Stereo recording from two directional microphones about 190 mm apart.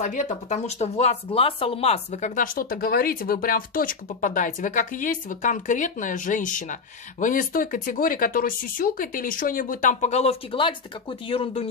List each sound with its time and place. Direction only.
0.0 s speech: 40° left (ahead or behind)